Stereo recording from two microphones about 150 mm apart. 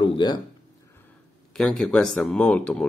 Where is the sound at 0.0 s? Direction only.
30° left (ahead or behind).